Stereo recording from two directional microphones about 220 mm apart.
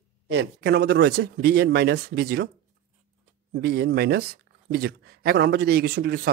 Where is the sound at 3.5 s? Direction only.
45° right (ahead or behind).